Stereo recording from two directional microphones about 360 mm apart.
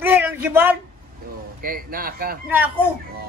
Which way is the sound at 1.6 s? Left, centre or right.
Right.